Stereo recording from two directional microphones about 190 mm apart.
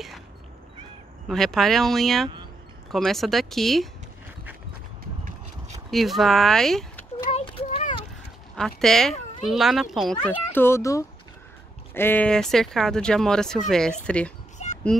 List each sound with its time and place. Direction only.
1.2 s speech: centre (ahead or behind)
5.9 s speech: centre (ahead or behind)
7.2 s a sound: 30° left (ahead or behind)
8.5 s speech: centre (ahead or behind)
10.3 s a child's voice: 10° left (ahead or behind)
14.6 s a sound: 35° left (ahead or behind)